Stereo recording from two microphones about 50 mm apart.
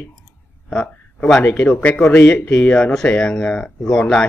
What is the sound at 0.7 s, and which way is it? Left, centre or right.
A man's voice, left.